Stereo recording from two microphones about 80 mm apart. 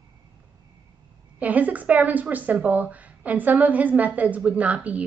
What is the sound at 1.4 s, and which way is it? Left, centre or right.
A woman's voice, centre.